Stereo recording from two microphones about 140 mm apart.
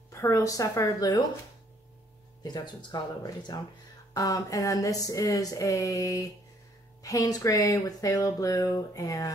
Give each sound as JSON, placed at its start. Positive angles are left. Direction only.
{"t": 0.1, "sound": "speech", "side_deg": 20}
{"t": 2.4, "sound": "speech", "side_deg": 30}